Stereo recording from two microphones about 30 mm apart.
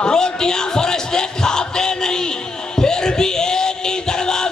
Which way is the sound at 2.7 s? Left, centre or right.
Left.